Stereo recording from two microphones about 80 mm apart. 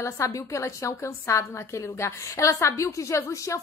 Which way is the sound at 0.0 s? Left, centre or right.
Left.